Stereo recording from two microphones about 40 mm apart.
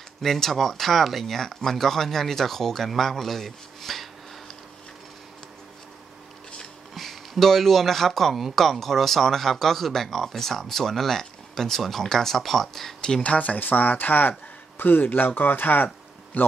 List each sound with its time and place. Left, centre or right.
0.2 s speech: centre
6.9 s speech: centre
13.2 s speech: left
13.6 s speech: left